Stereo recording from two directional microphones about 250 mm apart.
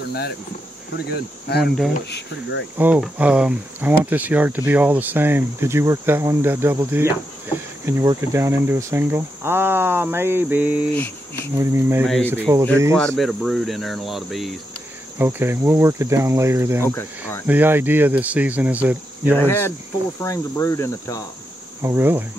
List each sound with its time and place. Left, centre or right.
0.9 s cricket: left
2.0 s speech: left
2.8 s speech: centre
12.9 s speech: centre
19.3 s cricket: centre
21.8 s speech: centre